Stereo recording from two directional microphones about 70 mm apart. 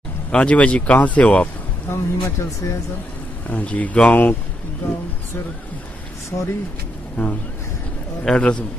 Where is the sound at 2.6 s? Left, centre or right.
Left.